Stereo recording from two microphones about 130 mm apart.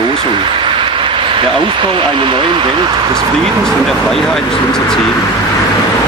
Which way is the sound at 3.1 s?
5° left (ahead or behind).